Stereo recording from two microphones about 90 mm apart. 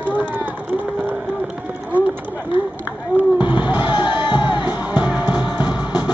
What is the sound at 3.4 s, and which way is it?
Music, 60° left (ahead or behind).